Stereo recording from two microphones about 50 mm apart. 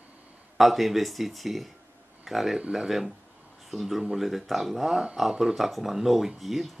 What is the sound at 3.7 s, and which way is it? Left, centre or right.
Speech, centre.